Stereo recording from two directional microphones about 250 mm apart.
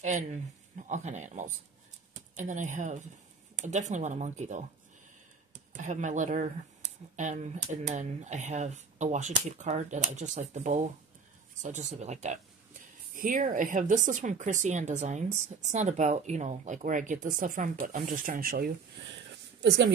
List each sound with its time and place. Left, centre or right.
0.0 s speech: right